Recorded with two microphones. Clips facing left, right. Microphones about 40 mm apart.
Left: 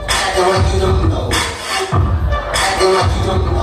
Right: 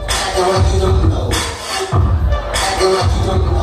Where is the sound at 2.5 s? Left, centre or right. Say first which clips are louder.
Left 1 dB; centre.